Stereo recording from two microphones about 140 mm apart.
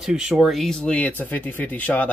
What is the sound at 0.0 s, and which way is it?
Speech, 5° right (ahead or behind).